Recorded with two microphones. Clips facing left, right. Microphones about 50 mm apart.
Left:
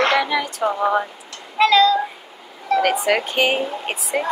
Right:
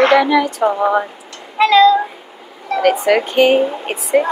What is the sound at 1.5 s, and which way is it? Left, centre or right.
Child singing, centre.